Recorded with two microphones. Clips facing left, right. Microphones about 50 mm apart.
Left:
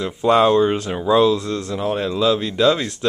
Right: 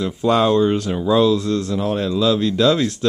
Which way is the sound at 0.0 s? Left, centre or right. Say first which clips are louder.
Left 2 dB; centre.